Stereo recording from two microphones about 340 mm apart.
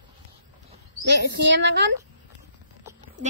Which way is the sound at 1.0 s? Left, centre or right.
Right.